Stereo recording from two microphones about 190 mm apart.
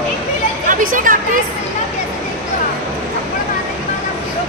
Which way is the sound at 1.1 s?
45° right (ahead or behind).